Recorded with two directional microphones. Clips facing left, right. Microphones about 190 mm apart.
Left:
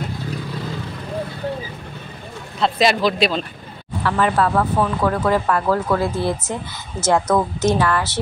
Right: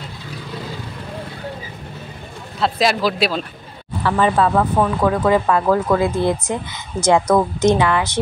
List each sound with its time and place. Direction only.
2.6 s speech: centre (ahead or behind)
4.0 s speech: 20° right (ahead or behind)